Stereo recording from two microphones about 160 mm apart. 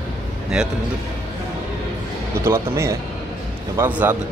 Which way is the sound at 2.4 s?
15° right (ahead or behind).